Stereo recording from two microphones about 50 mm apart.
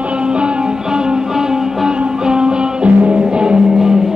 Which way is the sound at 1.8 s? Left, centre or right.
Centre.